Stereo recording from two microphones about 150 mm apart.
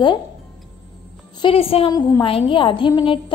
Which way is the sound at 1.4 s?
40° left (ahead or behind).